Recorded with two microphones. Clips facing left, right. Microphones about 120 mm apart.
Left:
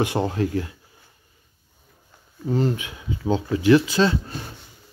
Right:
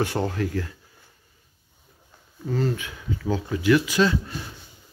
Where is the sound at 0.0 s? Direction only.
20° left (ahead or behind).